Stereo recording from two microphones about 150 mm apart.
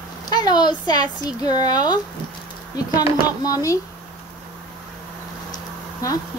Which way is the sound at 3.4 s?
20° left (ahead or behind).